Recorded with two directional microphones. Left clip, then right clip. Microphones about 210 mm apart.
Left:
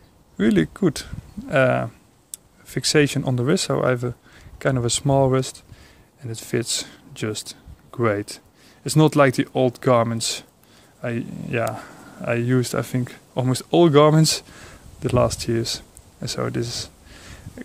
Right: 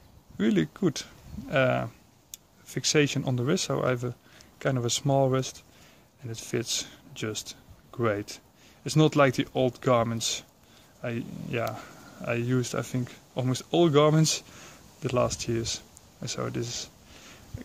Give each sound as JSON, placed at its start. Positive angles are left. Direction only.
{"t": 0.4, "sound": "speech", "side_deg": 15}